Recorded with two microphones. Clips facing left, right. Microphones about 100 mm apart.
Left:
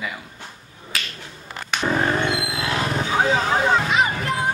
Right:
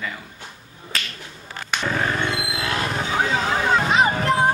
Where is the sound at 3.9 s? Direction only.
35° right (ahead or behind).